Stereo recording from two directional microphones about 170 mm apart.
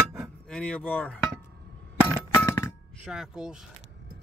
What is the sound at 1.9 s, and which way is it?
Chink, 10° right (ahead or behind).